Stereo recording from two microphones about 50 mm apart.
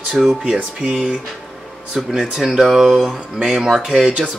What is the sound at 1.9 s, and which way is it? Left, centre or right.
Speech, centre.